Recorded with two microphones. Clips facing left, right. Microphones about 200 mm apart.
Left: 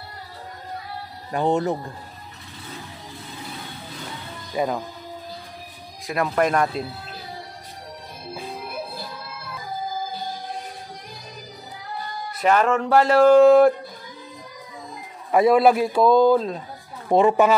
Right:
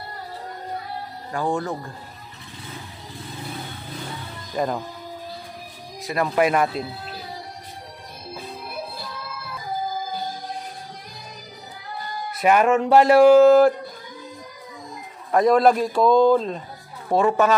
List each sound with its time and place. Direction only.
1.3 s speech: 20° left (ahead or behind)
4.6 s speech: 5° left (ahead or behind)
6.0 s speech: centre (ahead or behind)
12.4 s speech: 15° right (ahead or behind)
15.3 s a man's voice: 5° left (ahead or behind)
17.1 s a man's voice: 15° left (ahead or behind)